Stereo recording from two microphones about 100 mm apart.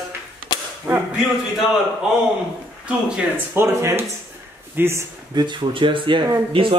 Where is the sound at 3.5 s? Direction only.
25° right (ahead or behind).